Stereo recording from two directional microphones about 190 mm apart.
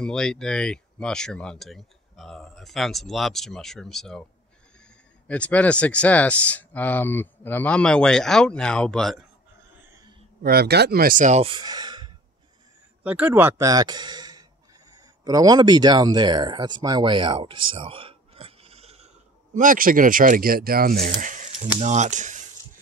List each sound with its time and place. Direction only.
0.0 s speech: 5° left (ahead or behind)
5.3 s speech: 5° left (ahead or behind)
9.8 s a sound: 15° right (ahead or behind)
10.4 s speech: 55° right (ahead or behind); by 12.1 s 20° right (ahead or behind)
13.0 s speech: 10° right (ahead or behind); by 21.0 s 50° right (ahead or behind)
21.0 s speech: 40° right (ahead or behind)